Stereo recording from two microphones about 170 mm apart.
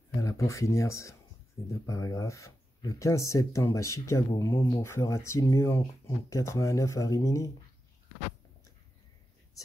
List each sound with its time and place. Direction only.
0.2 s speech: 20° left (ahead or behind)